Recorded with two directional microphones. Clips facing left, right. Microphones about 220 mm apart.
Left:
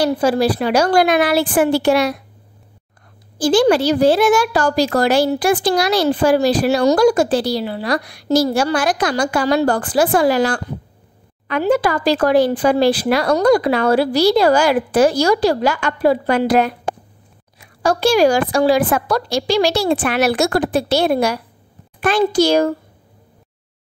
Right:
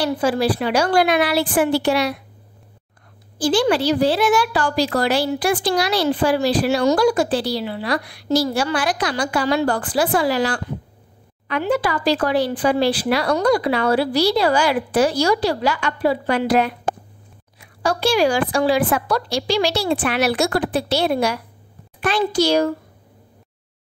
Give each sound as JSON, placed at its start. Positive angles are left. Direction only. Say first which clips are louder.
{"t": 0.0, "sound": "a woman's voice", "louder": "left 4 dB", "side_deg": 40}
{"t": 3.3, "sound": "a woman's voice", "louder": "left 4 dB", "side_deg": 45}
{"t": 17.8, "sound": "a woman's voice", "louder": "left 4 dB", "side_deg": 45}